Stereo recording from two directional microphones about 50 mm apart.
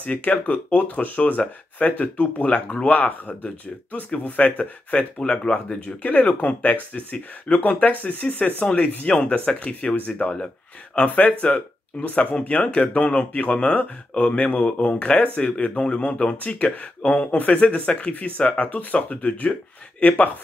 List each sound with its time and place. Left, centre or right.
0.0 s speech: left
4.4 s speech: left